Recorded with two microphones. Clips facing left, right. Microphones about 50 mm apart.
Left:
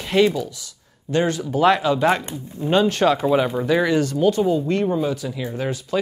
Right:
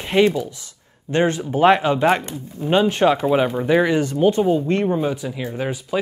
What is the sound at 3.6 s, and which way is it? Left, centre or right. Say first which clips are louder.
Speech: right 1 dB; right.